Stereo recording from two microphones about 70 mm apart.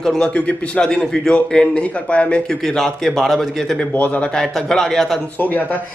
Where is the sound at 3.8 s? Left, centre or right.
Left.